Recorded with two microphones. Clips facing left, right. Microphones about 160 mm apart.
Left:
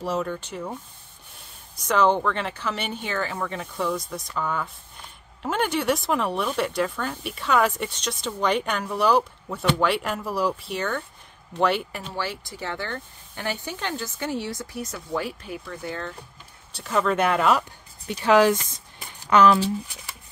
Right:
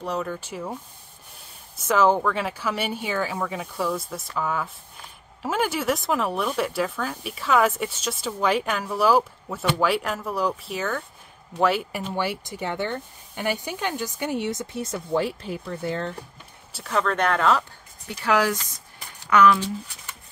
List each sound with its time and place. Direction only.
0.0 s speech: centre (ahead or behind)
1.8 s speech: 5° right (ahead or behind); by 16.1 s 30° right (ahead or behind)
16.7 s speech: centre (ahead or behind); by 19.6 s 30° left (ahead or behind)